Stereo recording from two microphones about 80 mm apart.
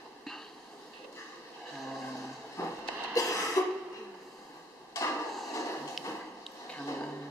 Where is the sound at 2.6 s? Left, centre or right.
Left.